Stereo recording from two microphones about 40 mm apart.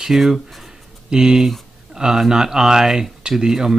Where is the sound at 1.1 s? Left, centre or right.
Centre.